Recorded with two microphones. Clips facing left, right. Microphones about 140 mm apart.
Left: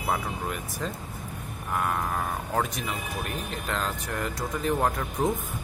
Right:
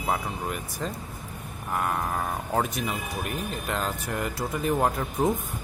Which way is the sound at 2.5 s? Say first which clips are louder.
Right 2 dB; 5° right (ahead or behind).